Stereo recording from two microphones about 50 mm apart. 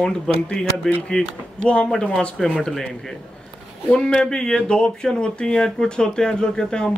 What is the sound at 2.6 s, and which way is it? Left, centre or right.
Speech, centre.